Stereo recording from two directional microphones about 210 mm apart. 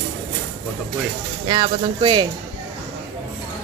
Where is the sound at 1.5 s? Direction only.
20° right (ahead or behind).